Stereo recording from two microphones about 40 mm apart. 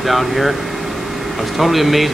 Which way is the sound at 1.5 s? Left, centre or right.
Centre.